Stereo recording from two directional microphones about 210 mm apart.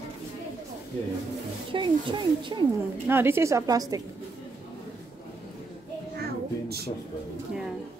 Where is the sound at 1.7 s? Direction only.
20° right (ahead or behind).